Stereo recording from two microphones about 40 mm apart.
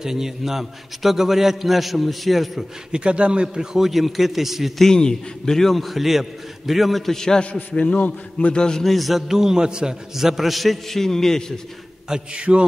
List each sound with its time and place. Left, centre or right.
0.0 s a man's voice: centre
2.9 s a man's voice: right
3.5 s a man's voice: centre
4.7 s a man's voice: centre
7.7 s a man's voice: left
8.5 s a man's voice: centre
8.8 s a man's voice: centre
12.1 s a man's voice: right